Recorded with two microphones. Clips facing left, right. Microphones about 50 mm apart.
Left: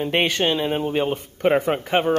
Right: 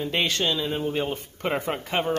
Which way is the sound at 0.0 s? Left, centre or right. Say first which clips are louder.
Left 5 dB; left.